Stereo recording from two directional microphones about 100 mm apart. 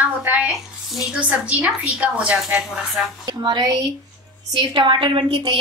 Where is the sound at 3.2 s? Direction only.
45° right (ahead or behind).